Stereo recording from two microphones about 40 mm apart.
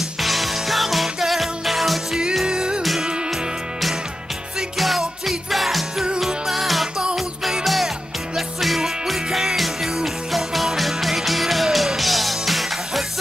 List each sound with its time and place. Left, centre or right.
0.2 s music: centre
2.4 s music: centre
2.8 s music: centre
4.7 s music: centre